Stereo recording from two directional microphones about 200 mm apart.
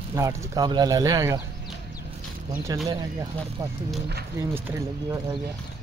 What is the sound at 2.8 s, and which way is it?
Speech, 15° right (ahead or behind).